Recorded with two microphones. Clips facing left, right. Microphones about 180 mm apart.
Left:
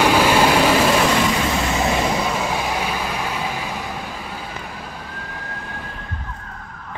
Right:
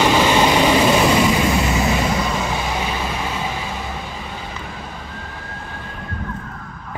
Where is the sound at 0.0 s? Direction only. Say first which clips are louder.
Even; 10° left (ahead or behind).